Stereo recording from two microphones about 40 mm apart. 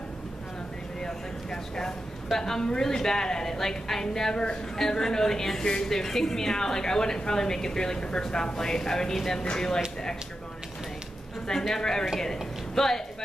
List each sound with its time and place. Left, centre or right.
1.0 s a sound: centre
2.3 s a woman's voice: centre
11.4 s a woman's voice: centre